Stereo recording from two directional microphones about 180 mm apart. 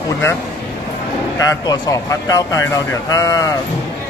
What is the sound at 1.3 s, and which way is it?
Speech, 20° left (ahead or behind).